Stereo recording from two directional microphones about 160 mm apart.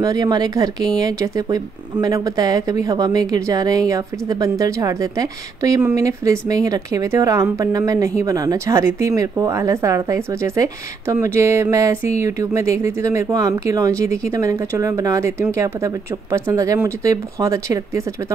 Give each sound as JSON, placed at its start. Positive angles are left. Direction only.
{"t": 0.0, "sound": "speech", "side_deg": -25}